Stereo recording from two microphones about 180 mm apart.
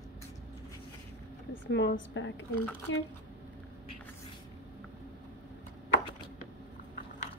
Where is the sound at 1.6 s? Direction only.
80° left.